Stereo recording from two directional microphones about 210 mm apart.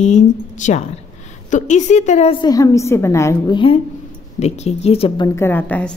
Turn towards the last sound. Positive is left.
turn(degrees=10)  # may be behind; listen again after turning